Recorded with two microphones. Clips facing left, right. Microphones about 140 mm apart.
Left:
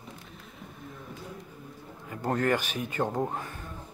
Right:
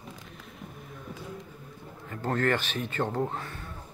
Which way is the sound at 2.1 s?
10° left (ahead or behind).